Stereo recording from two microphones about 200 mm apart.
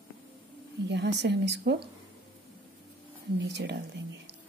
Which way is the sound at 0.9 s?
60° right (ahead or behind).